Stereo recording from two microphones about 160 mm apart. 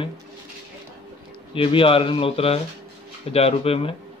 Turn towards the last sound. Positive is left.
turn(degrees=40)  # may be behind; listen again after turning